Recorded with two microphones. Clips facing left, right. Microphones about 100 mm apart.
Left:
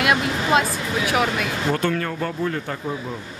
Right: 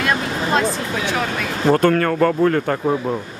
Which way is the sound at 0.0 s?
5° left (ahead or behind).